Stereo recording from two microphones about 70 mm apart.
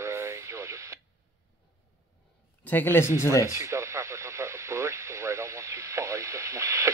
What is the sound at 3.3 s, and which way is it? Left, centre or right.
Radio, right.